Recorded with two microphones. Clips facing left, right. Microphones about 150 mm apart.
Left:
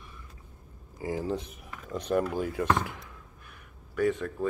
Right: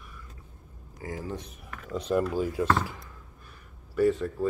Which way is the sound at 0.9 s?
30° left (ahead or behind).